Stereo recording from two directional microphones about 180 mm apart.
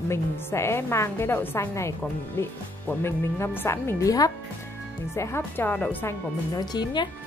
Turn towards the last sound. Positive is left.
turn(degrees=25)  # may be behind; listen again after turning